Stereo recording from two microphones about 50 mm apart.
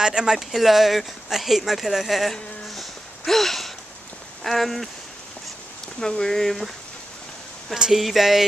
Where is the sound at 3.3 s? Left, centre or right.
Centre.